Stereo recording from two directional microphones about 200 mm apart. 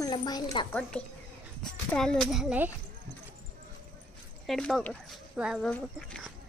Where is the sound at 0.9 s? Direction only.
5° left (ahead or behind).